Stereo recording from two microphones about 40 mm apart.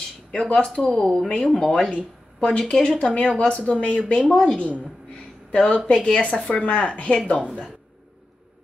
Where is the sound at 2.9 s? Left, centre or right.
Left.